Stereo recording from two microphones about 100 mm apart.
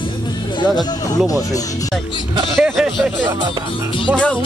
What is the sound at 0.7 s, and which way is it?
Speech, 40° left (ahead or behind).